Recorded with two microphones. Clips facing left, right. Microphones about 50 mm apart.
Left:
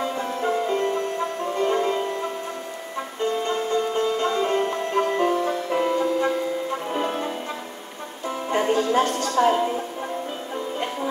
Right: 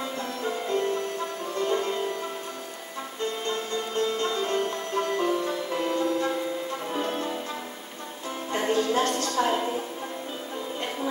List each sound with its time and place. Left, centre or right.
0.0 s music: left
3.4 s sitar: left
8.3 s music: left
9.4 s a woman's voice: centre